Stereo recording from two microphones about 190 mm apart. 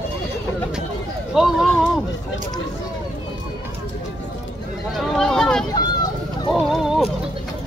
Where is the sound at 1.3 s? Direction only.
Centre (ahead or behind).